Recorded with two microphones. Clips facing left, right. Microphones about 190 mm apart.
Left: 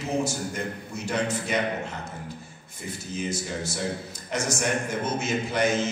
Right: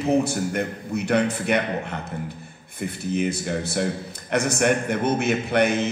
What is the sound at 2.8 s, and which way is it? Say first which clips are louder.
A man's voice: right 8 dB; 60° right (ahead or behind).